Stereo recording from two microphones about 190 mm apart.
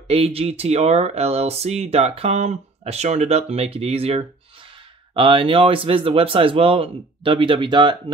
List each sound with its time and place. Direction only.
0.1 s speech: 30° right (ahead or behind)